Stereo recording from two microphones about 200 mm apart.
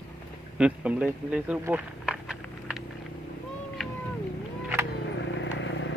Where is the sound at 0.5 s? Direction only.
5° right (ahead or behind).